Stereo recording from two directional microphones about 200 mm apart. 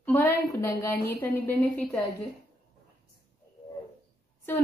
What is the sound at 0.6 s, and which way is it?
A woman's voice, 10° left (ahead or behind).